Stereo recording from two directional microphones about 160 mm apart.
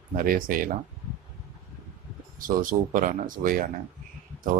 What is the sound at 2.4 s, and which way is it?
Speech, 55° right (ahead or behind).